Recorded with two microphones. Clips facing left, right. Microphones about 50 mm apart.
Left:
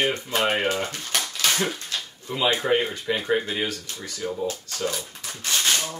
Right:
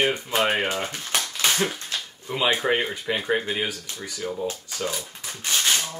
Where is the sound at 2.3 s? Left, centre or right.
Centre.